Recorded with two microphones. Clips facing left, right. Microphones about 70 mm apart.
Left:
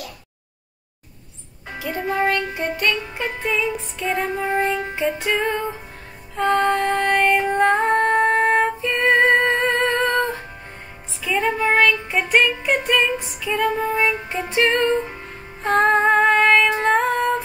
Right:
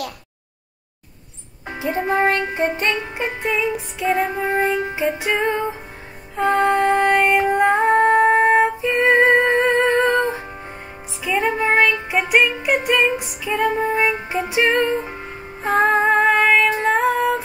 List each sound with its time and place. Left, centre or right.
1.8 s music: right
3.4 s music: centre
13.5 s female singing: centre